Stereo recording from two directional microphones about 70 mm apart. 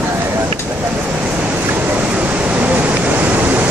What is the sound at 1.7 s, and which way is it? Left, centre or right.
Waves, right.